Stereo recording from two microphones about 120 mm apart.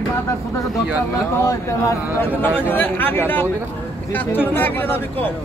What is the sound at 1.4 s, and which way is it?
Speech, 25° left (ahead or behind).